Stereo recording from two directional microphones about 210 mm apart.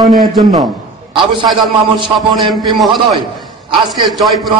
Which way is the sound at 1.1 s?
25° right (ahead or behind).